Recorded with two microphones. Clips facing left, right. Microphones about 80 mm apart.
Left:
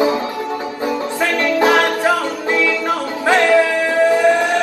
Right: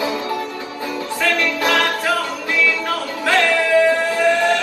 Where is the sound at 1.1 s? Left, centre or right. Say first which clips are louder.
Left 2 dB; left.